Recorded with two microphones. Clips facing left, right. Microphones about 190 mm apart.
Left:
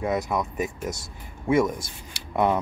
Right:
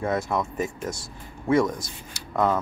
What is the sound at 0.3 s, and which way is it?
Speech, 10° left (ahead or behind).